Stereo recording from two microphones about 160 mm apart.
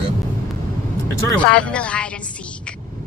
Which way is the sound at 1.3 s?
5° left (ahead or behind).